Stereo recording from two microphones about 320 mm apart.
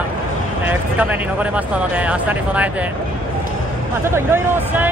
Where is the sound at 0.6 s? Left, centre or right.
Centre.